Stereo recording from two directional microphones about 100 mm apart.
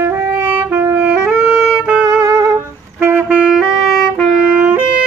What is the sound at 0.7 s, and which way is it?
Saxophone, 25° right (ahead or behind).